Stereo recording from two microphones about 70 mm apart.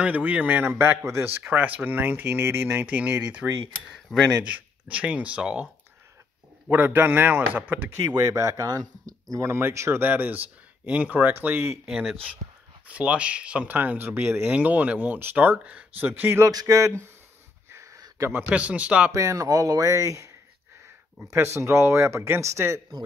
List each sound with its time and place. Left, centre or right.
0.0 s speech: right
1.4 s speech: right
6.7 s speech: right
8.3 s speech: right
9.4 s speech: right
11.8 s speech: centre
12.8 s speech: centre
16.4 s speech: right
17.9 s a sound: right
18.5 s speech: centre
19.1 s speech: right
21.3 s speech: right